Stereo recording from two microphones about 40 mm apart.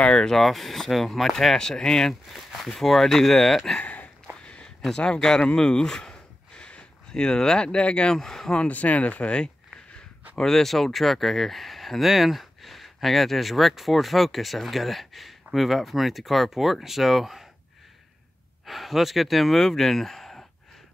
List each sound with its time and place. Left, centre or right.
0.0 s speech: centre
2.2 s speech: centre
3.8 s a sound: left
4.9 s speech: left
5.6 s a sound: centre
8.2 s speech: centre
8.6 s speech: left
10.3 s speech: centre
18.7 s speech: centre